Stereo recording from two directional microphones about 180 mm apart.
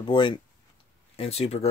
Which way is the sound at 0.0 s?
25° left (ahead or behind).